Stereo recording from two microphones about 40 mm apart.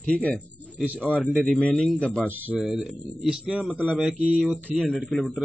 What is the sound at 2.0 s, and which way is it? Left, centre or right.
Speech, left.